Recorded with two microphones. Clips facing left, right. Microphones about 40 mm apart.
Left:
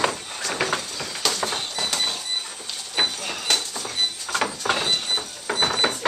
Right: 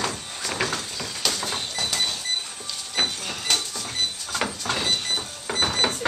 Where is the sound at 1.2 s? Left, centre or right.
Centre.